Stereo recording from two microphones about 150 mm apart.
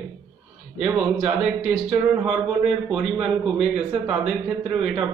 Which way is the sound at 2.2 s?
5° right (ahead or behind).